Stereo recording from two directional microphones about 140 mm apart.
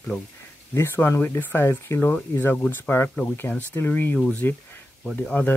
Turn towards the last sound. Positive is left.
turn(degrees=10)  # may be behind; listen again after turning